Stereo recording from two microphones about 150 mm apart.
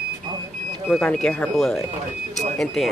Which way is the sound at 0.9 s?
5° left (ahead or behind).